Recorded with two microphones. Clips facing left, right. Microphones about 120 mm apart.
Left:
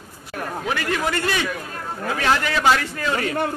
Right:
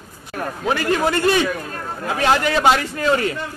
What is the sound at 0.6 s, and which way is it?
Speech, 35° right (ahead or behind).